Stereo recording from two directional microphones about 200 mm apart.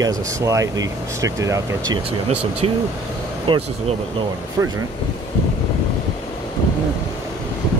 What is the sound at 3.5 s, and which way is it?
Speech, 25° right (ahead or behind).